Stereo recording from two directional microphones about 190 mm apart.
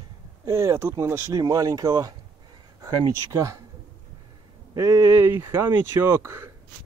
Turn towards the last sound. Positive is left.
turn(degrees=-15)  # may be behind; listen again after turning